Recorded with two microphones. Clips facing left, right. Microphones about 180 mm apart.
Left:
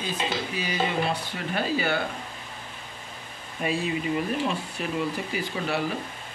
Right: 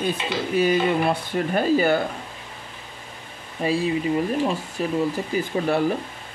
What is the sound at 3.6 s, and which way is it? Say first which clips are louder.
Speech: right 5 dB; 35° right (ahead or behind).